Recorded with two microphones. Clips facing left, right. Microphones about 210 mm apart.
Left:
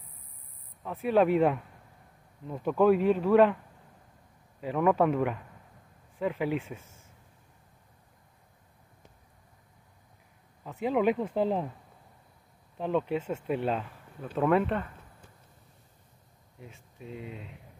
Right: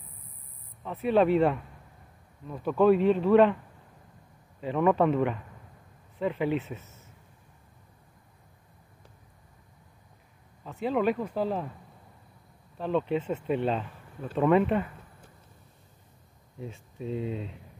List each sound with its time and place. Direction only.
1.0 s speech: 10° left (ahead or behind)
4.6 s speech: 5° left (ahead or behind)
6.8 s a sound: 30° left (ahead or behind)
10.6 s speech: 10° left (ahead or behind)
12.7 s speech: 15° left (ahead or behind); by 14.9 s 5° right (ahead or behind)
16.5 s speech: 30° right (ahead or behind)